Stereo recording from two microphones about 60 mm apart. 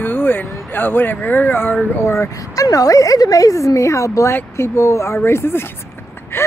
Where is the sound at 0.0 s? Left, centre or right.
Left.